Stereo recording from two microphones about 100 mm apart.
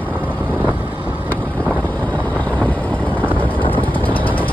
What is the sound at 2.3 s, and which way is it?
Vehicle, 20° left (ahead or behind).